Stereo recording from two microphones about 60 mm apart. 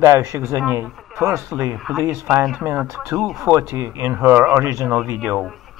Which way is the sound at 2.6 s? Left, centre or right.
Right.